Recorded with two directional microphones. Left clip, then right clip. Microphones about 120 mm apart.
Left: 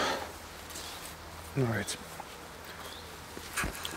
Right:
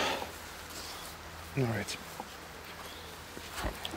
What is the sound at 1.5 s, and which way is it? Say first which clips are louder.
Speech: left 2 dB; 5° left (ahead or behind).